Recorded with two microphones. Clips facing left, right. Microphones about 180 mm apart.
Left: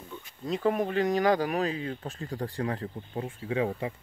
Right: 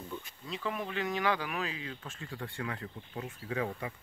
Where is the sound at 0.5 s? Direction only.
45° left (ahead or behind).